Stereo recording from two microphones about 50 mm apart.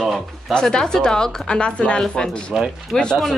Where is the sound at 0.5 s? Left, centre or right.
Centre.